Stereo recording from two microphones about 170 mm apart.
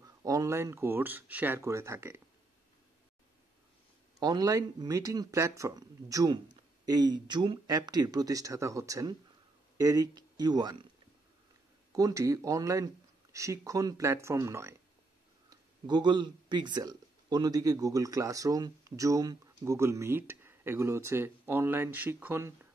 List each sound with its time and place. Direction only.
0.0 s speech: 20° right (ahead or behind)
4.2 s speech: 25° right (ahead or behind)
11.9 s speech: 20° right (ahead or behind)
15.5 s speech: 25° right (ahead or behind)